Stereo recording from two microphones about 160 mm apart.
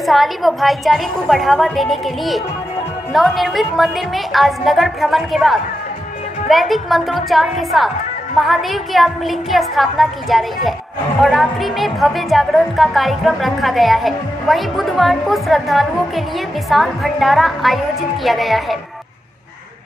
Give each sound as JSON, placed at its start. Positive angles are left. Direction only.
{"t": 0.0, "sound": "a woman's voice", "side_deg": 0}